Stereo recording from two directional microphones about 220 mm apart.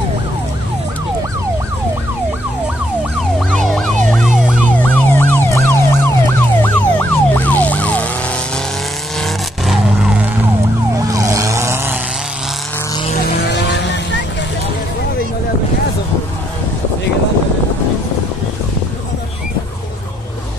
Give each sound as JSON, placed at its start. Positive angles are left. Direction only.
{"t": 3.2, "sound": "emergency vehicle", "side_deg": 0}
{"t": 4.9, "sound": "emergency vehicle", "side_deg": 10}
{"t": 9.2, "sound": "vehicle", "side_deg": 0}
{"t": 11.0, "sound": "vehicle", "side_deg": -15}
{"t": 13.3, "sound": "vehicle", "side_deg": 50}